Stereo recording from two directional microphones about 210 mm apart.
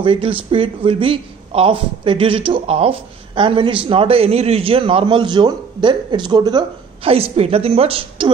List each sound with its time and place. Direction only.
0.0 s a man's voice: 25° right (ahead or behind)